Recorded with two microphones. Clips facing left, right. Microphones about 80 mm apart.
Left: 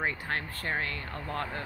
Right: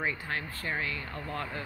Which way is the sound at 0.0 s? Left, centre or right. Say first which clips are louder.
Left 1 dB; left.